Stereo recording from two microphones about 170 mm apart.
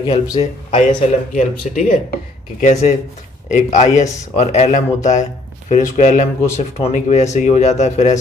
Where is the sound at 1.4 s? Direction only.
50° left (ahead or behind).